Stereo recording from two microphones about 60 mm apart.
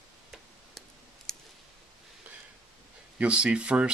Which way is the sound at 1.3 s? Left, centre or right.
Centre.